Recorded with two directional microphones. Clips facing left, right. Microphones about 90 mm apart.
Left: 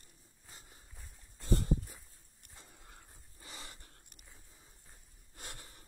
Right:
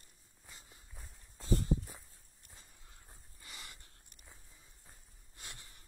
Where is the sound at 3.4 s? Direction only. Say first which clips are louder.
Left 2 dB; 30° left (ahead or behind).